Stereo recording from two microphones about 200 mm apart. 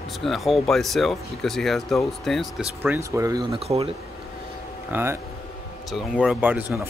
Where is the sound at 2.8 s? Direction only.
10° right (ahead or behind).